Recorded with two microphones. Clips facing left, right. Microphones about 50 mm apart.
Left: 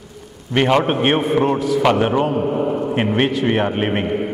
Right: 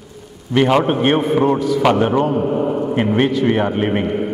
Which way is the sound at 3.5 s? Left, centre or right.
Left.